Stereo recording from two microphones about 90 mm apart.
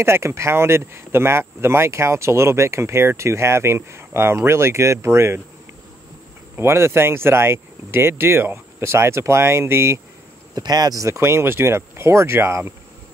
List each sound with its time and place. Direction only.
0.0 s speech: 30° right (ahead or behind)
6.5 s speech: 30° right (ahead or behind)
10.5 s speech: 45° right (ahead or behind); by 12.7 s 30° right (ahead or behind)